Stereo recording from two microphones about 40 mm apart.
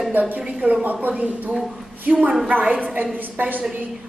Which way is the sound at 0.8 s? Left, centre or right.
Right.